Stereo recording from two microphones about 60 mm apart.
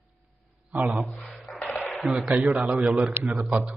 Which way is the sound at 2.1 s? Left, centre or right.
Centre.